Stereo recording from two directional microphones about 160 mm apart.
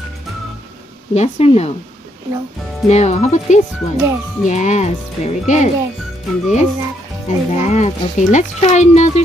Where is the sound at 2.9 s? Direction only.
45° left (ahead or behind).